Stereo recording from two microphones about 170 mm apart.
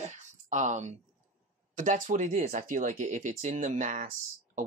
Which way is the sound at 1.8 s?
50° right (ahead or behind).